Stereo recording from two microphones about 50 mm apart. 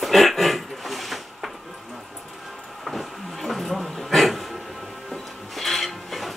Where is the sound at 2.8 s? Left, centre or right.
Centre.